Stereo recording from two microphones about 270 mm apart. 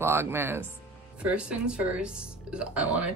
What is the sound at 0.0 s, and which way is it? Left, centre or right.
Speech, centre.